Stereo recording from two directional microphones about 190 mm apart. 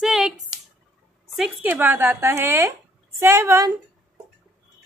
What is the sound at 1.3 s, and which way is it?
Speech, 5° right (ahead or behind).